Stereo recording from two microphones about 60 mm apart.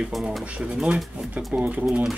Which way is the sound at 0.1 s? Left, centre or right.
Centre.